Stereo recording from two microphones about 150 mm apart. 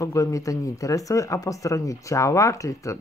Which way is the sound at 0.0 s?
20° left (ahead or behind).